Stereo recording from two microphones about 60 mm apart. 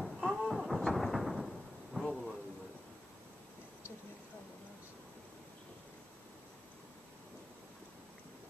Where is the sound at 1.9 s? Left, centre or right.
Centre.